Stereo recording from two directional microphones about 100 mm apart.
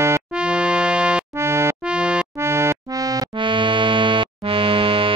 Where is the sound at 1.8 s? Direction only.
10° right (ahead or behind).